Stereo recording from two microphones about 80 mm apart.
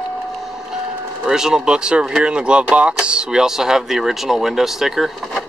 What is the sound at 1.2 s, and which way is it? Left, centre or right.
Speech, centre.